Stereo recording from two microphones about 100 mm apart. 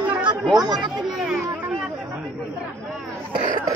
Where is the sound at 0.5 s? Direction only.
40° right (ahead or behind).